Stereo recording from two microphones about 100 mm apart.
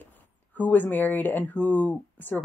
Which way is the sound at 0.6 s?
15° left (ahead or behind).